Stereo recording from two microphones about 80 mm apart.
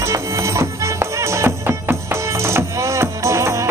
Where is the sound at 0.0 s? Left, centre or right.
Right.